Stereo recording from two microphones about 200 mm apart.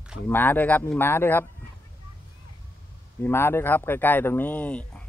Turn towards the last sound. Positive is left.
turn(degrees=5)  # may be behind; listen again after turning